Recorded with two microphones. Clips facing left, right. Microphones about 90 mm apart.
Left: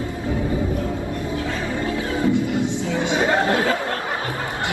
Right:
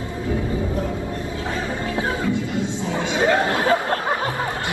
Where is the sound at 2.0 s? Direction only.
25° right (ahead or behind).